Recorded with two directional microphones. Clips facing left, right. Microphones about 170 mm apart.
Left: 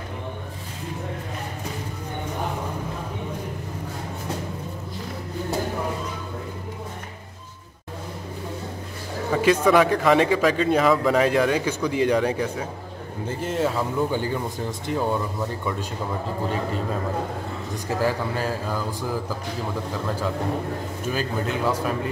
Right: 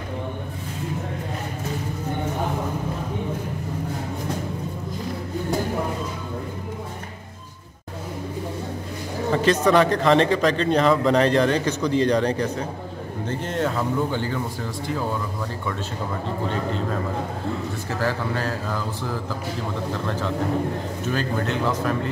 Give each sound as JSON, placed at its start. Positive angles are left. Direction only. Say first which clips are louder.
{"t": 9.3, "sound": "a man's voice", "louder": "even", "side_deg": 10}
{"t": 17.8, "sound": "a man's voice", "louder": "left 3 dB", "side_deg": 15}